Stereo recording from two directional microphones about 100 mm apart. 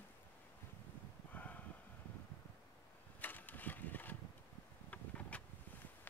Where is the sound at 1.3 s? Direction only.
15° left (ahead or behind).